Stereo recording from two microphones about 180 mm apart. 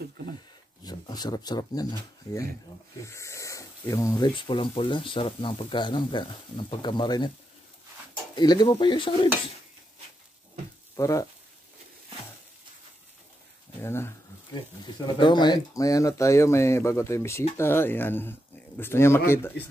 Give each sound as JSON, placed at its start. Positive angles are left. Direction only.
{"t": 0.8, "sound": "speech", "side_deg": 20}
{"t": 8.4, "sound": "speech", "side_deg": 25}
{"t": 11.0, "sound": "speech", "side_deg": 20}
{"t": 13.8, "sound": "a sound", "side_deg": 15}
{"t": 15.0, "sound": "speech", "side_deg": 25}